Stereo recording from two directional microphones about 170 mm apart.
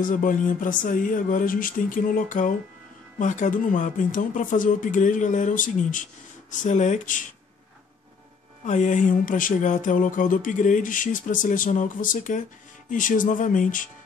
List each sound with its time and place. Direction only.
0.0 s speech: 50° left (ahead or behind)
8.6 s speech: 45° left (ahead or behind)